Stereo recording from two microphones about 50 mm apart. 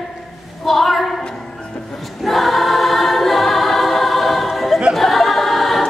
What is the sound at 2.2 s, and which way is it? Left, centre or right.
Choir, centre.